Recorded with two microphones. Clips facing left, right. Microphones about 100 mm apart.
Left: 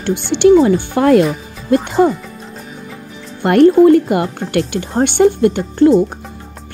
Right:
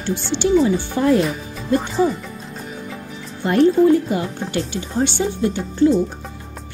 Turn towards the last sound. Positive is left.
turn(degrees=60)  # may be behind; listen again after turning